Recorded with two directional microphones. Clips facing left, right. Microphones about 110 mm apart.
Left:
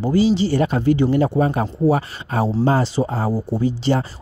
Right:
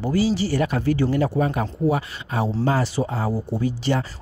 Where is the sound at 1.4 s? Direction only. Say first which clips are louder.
Left 4 dB; 35° left (ahead or behind).